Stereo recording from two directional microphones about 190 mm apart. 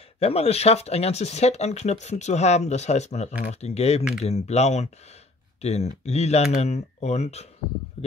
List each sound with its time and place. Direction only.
0.2 s speech: 30° left (ahead or behind)